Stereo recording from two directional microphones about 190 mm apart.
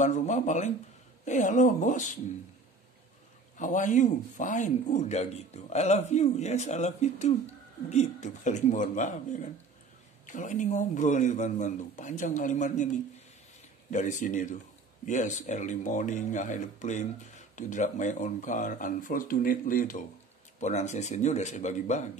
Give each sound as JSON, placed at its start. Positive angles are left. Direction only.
{"t": 0.0, "sound": "speech", "side_deg": 40}
{"t": 3.5, "sound": "speech", "side_deg": 40}
{"t": 13.8, "sound": "speech", "side_deg": 40}